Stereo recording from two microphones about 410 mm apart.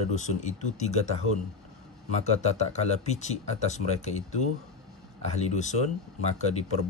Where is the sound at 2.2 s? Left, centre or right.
Centre.